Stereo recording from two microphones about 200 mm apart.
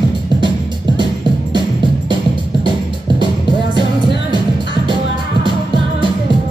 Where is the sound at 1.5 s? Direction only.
25° right (ahead or behind).